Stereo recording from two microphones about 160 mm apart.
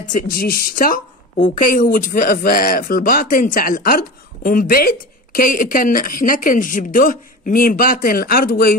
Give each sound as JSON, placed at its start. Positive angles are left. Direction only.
{"t": 0.2, "sound": "speech", "side_deg": 65}